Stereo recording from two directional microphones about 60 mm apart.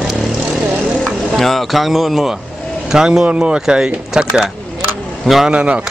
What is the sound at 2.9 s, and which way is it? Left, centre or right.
Speech, centre.